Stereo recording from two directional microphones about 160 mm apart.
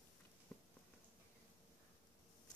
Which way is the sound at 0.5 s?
10° left (ahead or behind).